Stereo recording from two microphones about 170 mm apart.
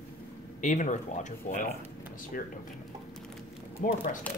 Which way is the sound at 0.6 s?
45° left (ahead or behind).